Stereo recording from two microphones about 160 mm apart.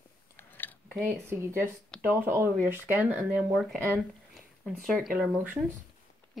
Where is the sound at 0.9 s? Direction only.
Centre (ahead or behind).